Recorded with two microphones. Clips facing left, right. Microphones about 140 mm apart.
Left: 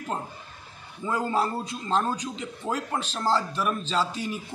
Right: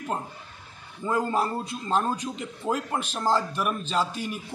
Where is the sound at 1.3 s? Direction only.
10° right (ahead or behind).